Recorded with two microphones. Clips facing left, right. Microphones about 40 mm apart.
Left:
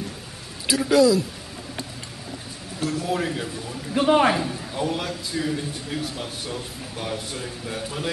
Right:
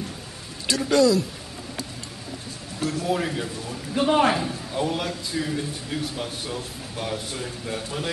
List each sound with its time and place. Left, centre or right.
0.7 s a man's voice: centre
2.8 s a man's voice: centre